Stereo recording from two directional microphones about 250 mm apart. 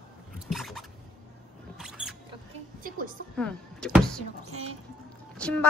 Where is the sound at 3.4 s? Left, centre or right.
Centre.